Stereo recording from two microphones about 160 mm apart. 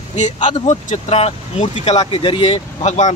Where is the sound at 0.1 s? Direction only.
45° left (ahead or behind).